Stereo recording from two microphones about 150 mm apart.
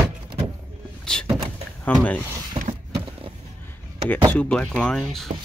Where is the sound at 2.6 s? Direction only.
35° right (ahead or behind).